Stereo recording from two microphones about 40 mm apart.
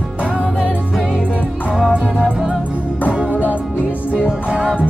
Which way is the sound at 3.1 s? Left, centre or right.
Right.